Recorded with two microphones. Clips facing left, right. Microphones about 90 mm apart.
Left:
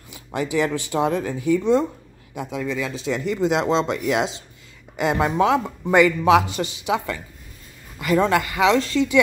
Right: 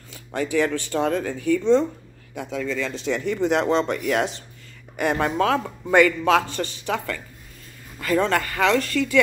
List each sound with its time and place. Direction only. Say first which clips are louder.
0.1 s a man's voice: even; 10° left (ahead or behind)